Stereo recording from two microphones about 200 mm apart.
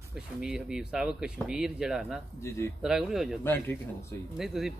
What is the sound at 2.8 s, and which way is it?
Cutlery, centre (ahead or behind).